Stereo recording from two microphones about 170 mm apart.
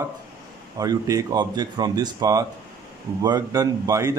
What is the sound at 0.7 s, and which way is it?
A man's voice, 20° right (ahead or behind).